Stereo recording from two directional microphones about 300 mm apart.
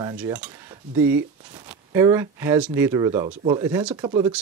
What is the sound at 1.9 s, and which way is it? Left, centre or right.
Speech, centre.